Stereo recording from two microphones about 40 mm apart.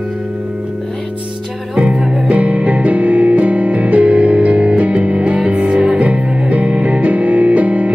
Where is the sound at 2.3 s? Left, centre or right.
Right.